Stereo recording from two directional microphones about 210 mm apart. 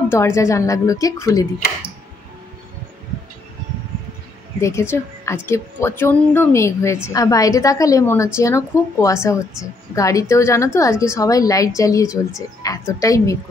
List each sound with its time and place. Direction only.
0.1 s a woman's voice: 15° left (ahead or behind)
4.6 s a woman's voice: 15° left (ahead or behind)